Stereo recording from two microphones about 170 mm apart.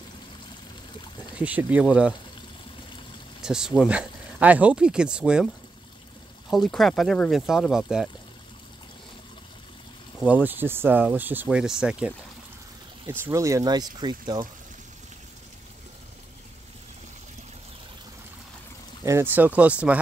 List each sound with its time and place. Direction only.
1.4 s speech: 10° right (ahead or behind)
3.4 s speech: 5° right (ahead or behind)
6.5 s speech: centre (ahead or behind)
10.2 s speech: 10° right (ahead or behind)
13.0 s speech: 15° right (ahead or behind)
19.0 s speech: 15° right (ahead or behind)